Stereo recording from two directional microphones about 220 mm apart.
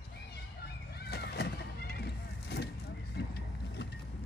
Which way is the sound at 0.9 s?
45° left (ahead or behind).